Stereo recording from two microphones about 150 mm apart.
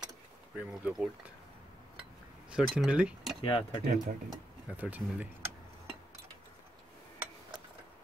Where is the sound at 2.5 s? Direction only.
5° right (ahead or behind).